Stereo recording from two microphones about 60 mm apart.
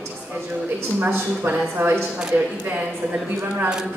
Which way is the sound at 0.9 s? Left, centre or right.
Right.